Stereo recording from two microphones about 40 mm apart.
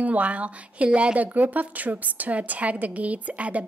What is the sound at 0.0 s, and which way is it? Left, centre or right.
A woman's voice, right.